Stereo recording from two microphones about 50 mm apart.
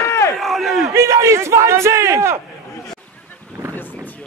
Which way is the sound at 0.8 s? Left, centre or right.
Right.